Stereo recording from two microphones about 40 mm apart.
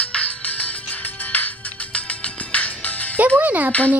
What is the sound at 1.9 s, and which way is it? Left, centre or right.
Music, left.